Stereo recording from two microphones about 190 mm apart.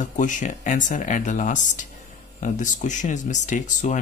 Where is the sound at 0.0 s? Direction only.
40° left (ahead or behind).